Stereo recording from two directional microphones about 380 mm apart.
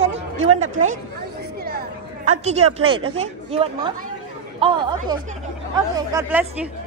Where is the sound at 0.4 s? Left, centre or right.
Right; by 6.7 s centre.